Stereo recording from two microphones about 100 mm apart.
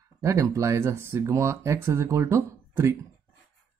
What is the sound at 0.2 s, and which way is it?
Speech, 30° right (ahead or behind).